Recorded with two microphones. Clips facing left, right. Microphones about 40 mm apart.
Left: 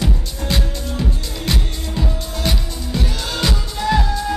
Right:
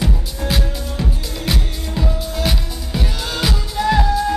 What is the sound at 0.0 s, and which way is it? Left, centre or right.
Music, centre.